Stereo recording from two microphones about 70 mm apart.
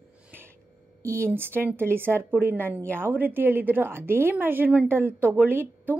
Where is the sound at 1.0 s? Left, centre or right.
Right.